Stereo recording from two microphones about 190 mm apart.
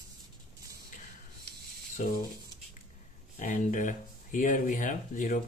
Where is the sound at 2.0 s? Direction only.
45° left (ahead or behind).